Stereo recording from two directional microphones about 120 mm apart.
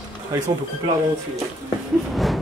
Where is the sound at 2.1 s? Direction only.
Centre (ahead or behind).